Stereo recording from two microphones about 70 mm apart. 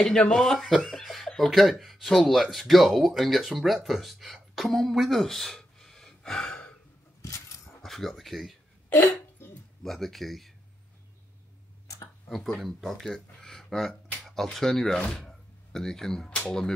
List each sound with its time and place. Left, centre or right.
0.0 s speech: centre
7.2 s keys jangling: left
7.8 s speech: centre
8.9 s hiccup: left
9.8 s speech: centre
12.3 s speech: centre